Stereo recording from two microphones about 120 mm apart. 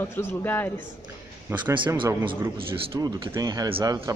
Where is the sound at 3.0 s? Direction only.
30° right (ahead or behind).